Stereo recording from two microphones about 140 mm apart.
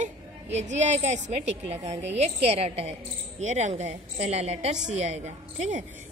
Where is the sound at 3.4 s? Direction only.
60° right (ahead or behind).